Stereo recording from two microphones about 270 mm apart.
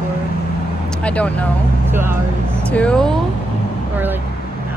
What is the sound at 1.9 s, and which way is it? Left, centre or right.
Speech, centre.